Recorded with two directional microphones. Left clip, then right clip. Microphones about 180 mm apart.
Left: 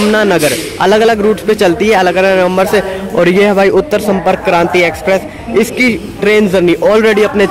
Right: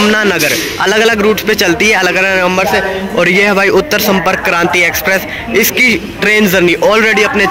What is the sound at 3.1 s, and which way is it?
A man's voice, 20° left (ahead or behind).